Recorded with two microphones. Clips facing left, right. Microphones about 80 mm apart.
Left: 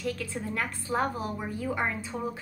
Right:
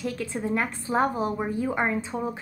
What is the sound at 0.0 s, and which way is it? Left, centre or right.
A woman's voice, right.